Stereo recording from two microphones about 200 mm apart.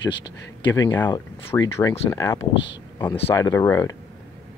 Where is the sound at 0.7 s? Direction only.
20° left (ahead or behind).